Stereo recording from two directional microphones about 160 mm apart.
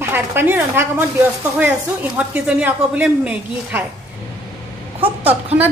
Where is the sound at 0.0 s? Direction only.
15° right (ahead or behind).